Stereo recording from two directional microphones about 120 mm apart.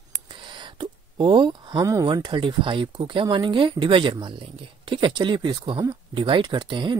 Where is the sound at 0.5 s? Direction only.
40° right (ahead or behind).